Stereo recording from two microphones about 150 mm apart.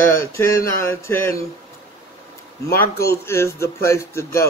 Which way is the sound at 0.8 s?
15° left (ahead or behind).